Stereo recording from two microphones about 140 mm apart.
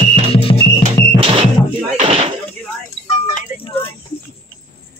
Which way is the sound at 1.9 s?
45° right (ahead or behind).